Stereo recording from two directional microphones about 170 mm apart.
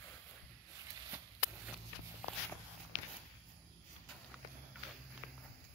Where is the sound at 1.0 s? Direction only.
15° right (ahead or behind).